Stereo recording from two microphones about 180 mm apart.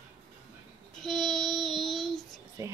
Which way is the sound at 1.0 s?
Centre (ahead or behind).